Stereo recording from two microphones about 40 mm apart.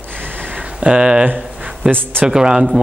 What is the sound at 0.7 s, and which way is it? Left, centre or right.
Speech, right.